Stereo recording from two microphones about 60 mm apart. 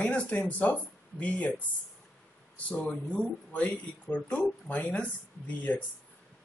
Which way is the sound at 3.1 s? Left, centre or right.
Left.